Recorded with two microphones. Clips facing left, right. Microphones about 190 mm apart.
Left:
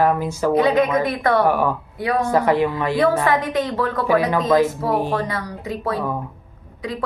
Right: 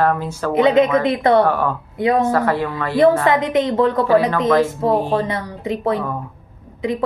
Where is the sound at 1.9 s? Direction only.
20° right (ahead or behind).